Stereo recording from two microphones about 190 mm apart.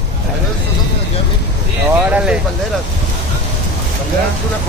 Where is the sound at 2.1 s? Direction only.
5° right (ahead or behind).